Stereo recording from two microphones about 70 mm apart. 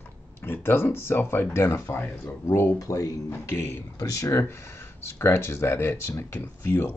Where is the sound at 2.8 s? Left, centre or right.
Left.